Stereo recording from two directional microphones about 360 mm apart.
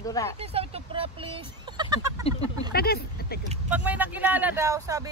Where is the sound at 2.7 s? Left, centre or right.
Left.